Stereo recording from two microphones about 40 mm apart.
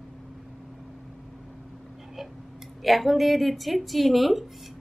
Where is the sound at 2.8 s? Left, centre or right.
Centre.